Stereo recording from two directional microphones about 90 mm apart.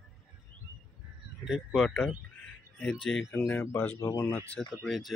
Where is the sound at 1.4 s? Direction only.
5° right (ahead or behind).